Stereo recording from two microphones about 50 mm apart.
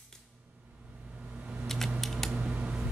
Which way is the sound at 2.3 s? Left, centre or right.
Right.